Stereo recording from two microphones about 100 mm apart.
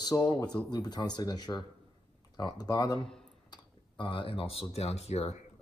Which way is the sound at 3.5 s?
55° left (ahead or behind).